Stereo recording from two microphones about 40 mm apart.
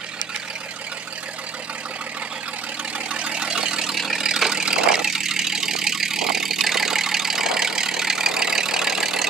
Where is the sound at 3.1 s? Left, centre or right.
Right.